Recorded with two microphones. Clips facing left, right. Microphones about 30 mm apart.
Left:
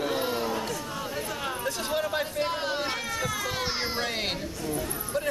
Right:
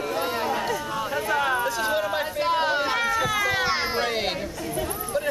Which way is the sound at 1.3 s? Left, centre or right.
Right.